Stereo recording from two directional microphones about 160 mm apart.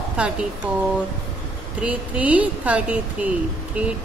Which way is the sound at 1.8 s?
10° right (ahead or behind).